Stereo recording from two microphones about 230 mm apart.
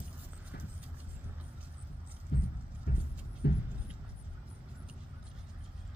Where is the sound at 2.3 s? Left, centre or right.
Left.